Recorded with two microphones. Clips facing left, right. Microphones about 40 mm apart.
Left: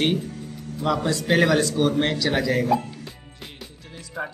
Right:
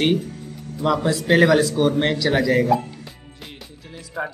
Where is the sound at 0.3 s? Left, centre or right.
Centre.